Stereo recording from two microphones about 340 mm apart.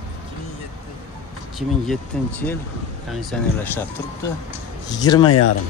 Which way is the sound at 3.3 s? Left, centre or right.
Centre.